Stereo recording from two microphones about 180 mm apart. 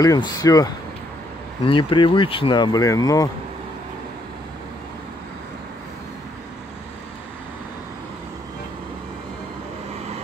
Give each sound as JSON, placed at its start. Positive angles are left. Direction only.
{"t": 0.0, "sound": "speech", "side_deg": 20}
{"t": 1.7, "sound": "speech", "side_deg": 30}